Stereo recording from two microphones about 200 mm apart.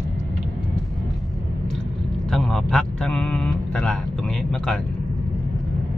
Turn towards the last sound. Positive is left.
turn(degrees=5)  # may be behind; listen again after turning